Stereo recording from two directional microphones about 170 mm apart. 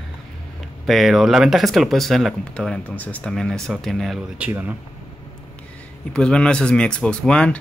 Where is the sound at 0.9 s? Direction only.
Centre (ahead or behind).